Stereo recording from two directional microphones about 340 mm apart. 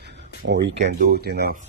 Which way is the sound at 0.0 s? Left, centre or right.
Right.